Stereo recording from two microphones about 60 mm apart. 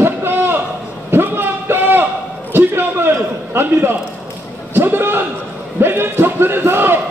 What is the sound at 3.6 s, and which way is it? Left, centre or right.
Speech, right.